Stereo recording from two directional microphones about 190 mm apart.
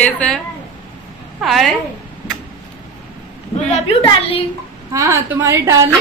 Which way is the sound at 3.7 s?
30° left (ahead or behind).